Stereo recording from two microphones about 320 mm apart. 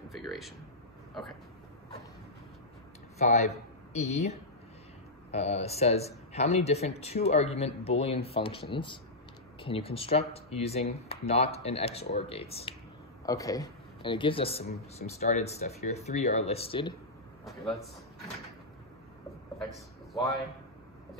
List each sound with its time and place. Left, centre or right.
0.1 s speech: centre
3.2 s speech: left
3.9 s speech: left
5.3 s speech: centre
17.5 s a man's voice: centre